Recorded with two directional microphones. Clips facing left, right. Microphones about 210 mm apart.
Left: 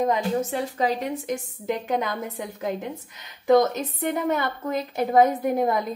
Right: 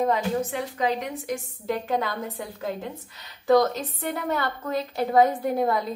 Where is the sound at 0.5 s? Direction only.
35° left (ahead or behind).